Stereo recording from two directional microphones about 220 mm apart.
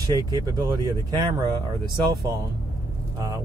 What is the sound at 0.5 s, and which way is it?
Speech, 20° right (ahead or behind).